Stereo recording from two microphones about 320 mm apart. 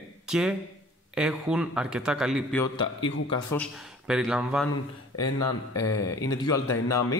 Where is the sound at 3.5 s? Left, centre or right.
Centre.